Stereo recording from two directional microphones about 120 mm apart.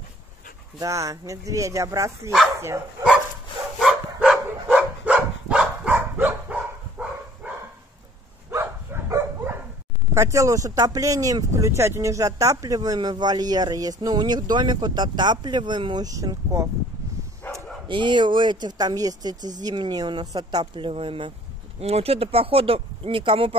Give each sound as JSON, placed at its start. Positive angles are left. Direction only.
{"t": 0.7, "sound": "speech", "side_deg": -25}
{"t": 3.8, "sound": "dog", "side_deg": -5}
{"t": 8.5, "sound": "dog", "side_deg": -25}
{"t": 10.1, "sound": "speech", "side_deg": -25}
{"t": 17.8, "sound": "speech", "side_deg": -40}